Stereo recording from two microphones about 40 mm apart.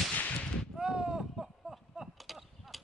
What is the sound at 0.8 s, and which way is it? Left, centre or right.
Artillery fire, right.